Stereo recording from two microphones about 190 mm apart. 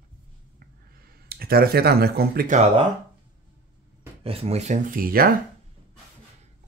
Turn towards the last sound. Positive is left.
turn(degrees=-50)  # may be behind; listen again after turning